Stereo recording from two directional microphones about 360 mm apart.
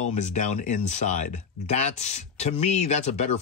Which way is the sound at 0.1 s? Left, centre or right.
Centre.